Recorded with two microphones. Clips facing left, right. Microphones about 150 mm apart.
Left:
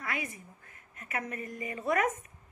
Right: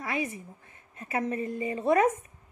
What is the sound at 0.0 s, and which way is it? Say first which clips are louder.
A woman's voice: right 6 dB; 25° right (ahead or behind).